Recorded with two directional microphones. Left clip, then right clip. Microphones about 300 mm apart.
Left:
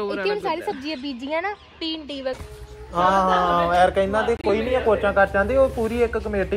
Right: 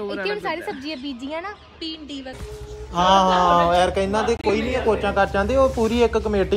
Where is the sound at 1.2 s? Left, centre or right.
Centre.